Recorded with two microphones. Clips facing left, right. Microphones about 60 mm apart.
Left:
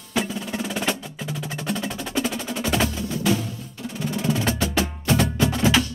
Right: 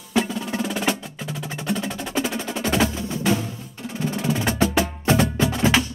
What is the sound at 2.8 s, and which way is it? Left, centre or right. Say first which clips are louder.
Music: right 1 dB; right.